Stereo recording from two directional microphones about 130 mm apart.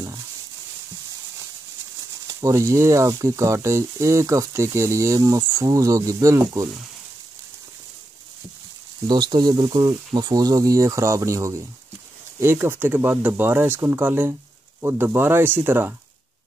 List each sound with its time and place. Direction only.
2.2 s speech: 25° right (ahead or behind)
9.0 s speech: 35° right (ahead or behind); by 15.9 s 15° right (ahead or behind)